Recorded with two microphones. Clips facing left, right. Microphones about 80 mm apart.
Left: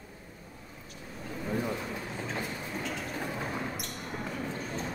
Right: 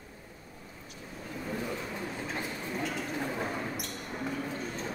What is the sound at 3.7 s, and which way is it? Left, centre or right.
Basketball bounce, centre.